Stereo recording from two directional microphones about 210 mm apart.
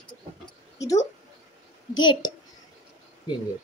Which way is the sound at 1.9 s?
20° left (ahead or behind).